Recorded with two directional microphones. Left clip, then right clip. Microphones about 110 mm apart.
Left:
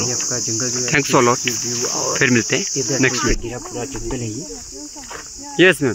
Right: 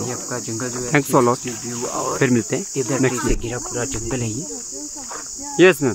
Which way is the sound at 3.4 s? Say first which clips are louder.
Right 2 dB; 20° right (ahead or behind).